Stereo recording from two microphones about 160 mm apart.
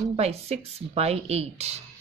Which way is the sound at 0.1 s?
40° right (ahead or behind).